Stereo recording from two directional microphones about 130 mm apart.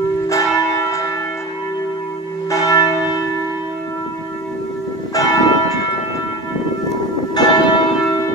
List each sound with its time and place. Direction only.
0.3 s church bell: 25° left (ahead or behind)
2.5 s church bell: 25° left (ahead or behind)
5.1 s church bell: 30° left (ahead or behind)
7.3 s church bell: 30° left (ahead or behind)